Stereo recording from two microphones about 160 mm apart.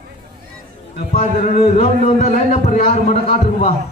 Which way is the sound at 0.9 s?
65° left (ahead or behind).